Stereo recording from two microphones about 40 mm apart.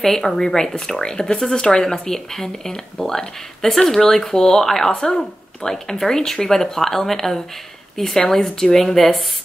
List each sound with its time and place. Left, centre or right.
0.0 s speech: centre